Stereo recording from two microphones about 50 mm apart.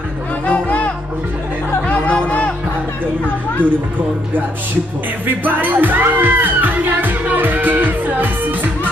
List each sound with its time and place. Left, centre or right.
0.5 s music: left
5.2 s speech: right